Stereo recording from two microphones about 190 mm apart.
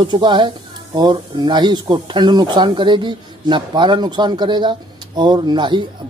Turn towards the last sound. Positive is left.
turn(degrees=-25)  # may be behind; listen again after turning